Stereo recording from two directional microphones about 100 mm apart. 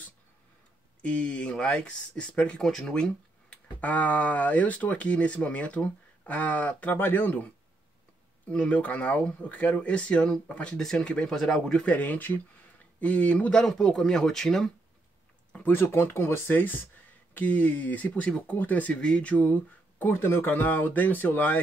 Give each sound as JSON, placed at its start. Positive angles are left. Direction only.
{"t": 1.0, "sound": "speech", "side_deg": 10}
{"t": 15.5, "sound": "speech", "side_deg": 20}